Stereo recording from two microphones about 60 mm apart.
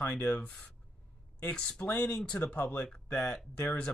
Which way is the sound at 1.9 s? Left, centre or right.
Left.